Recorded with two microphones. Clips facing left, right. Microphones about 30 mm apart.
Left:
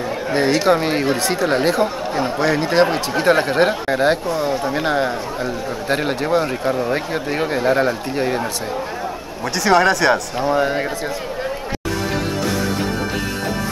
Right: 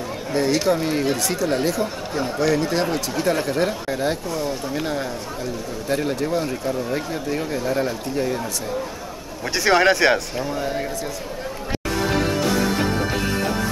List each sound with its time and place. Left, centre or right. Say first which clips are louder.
0.7 s speech: left 4 dB; left
9.6 s speech: left 2 dB; centre
10.4 s speech: left 7 dB; left